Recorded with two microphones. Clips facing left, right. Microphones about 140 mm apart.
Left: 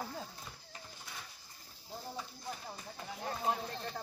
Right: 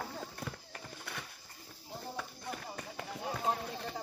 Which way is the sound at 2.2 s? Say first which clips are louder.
Right 2 dB; 65° right (ahead or behind).